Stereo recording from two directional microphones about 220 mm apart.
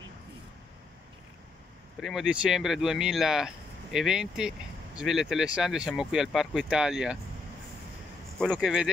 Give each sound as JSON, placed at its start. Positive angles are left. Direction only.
{"t": 2.0, "sound": "speech", "side_deg": 0}
{"t": 8.4, "sound": "speech", "side_deg": 0}